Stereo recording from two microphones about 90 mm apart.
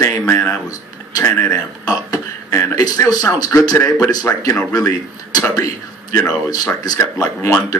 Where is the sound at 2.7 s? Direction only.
40° left (ahead or behind).